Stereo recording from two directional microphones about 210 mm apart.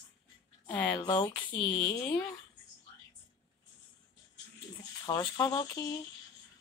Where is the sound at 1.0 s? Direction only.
20° left (ahead or behind).